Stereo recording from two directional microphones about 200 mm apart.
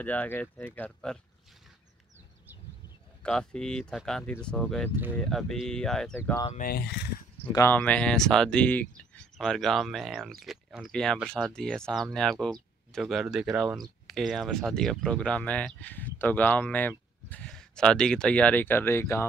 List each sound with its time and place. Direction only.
0.0 s speech: 10° left (ahead or behind)
3.2 s speech: 5° left (ahead or behind)
6.1 s speech: 15° left (ahead or behind)
6.5 s speech: 45° left (ahead or behind)
7.5 s speech: 10° left (ahead or behind)